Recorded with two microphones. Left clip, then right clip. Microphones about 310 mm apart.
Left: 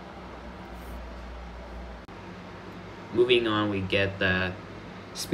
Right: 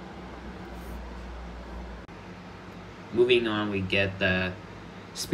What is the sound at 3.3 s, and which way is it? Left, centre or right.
Speech, centre.